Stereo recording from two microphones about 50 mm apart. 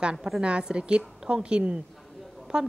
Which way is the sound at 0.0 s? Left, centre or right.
Centre.